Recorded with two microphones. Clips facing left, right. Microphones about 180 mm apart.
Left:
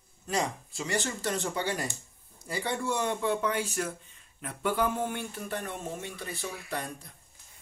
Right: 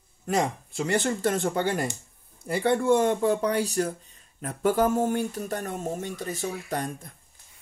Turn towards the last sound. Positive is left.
turn(degrees=-45)  # may be behind; listen again after turning